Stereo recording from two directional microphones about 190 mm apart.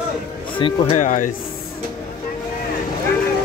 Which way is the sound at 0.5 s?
25° left (ahead or behind).